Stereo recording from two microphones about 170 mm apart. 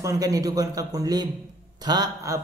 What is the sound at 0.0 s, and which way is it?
A man's voice, 20° right (ahead or behind).